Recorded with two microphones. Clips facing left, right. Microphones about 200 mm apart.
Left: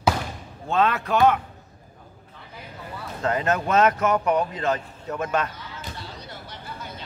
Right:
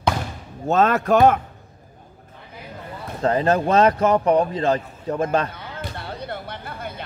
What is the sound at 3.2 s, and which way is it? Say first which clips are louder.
Speech: right 5 dB; 35° right (ahead or behind).